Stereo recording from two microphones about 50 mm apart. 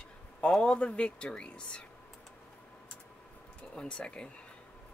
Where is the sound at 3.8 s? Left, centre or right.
Centre.